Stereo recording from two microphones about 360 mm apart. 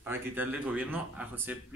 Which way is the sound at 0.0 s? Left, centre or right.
Centre.